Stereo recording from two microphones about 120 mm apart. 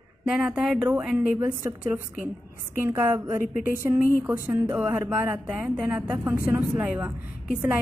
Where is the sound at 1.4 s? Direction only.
20° right (ahead or behind).